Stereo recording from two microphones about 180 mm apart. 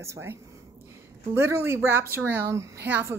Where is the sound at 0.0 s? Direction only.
15° right (ahead or behind).